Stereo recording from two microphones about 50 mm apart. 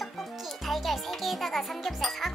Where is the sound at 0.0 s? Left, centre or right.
Centre.